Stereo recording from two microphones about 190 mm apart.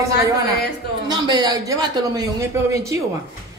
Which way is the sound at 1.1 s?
20° right (ahead or behind).